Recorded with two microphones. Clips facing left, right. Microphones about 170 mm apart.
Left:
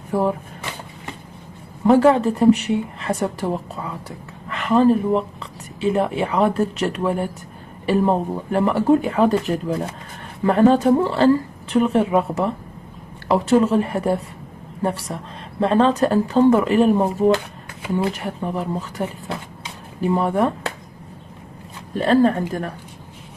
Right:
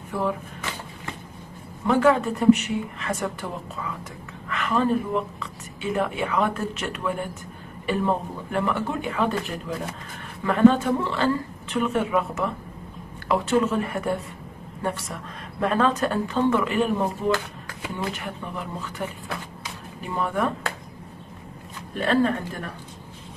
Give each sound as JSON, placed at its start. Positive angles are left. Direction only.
{"t": 0.1, "sound": "speech", "side_deg": 35}
{"t": 1.9, "sound": "speech", "side_deg": 35}
{"t": 21.9, "sound": "speech", "side_deg": 35}